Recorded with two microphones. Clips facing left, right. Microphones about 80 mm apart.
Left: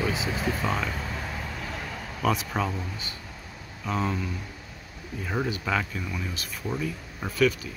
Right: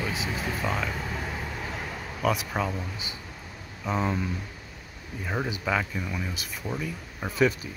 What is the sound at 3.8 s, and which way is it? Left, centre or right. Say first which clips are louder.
Speech: right 1 dB; centre.